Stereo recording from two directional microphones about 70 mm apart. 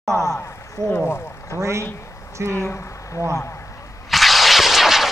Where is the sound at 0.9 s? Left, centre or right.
Left.